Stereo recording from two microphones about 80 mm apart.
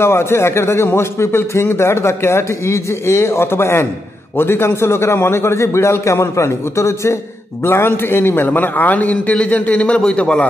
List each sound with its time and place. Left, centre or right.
0.0 s a man's voice: left; by 10.4 s centre